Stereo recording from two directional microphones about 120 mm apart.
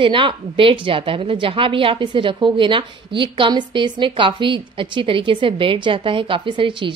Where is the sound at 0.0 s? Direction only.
45° right (ahead or behind).